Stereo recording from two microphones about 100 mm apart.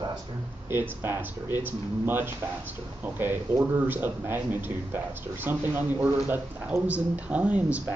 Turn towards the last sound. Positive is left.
turn(degrees=-15)  # may be behind; listen again after turning